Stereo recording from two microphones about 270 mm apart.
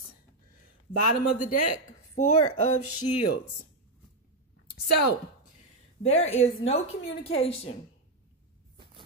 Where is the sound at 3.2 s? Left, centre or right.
Left.